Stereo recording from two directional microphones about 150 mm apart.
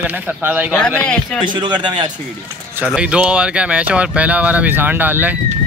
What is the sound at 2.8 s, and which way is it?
Speech, 5° right (ahead or behind).